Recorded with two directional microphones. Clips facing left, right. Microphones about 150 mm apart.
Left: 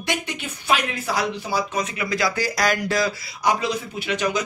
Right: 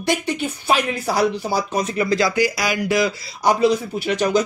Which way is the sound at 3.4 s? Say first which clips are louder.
Right 6 dB; 35° right (ahead or behind).